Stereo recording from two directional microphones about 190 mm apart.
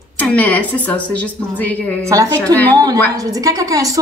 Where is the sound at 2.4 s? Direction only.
10° left (ahead or behind).